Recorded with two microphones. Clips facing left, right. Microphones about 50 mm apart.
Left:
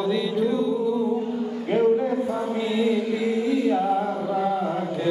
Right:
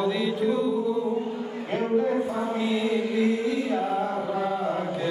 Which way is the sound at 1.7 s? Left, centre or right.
Centre.